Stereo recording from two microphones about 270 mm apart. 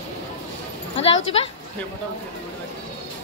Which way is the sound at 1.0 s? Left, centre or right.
Left.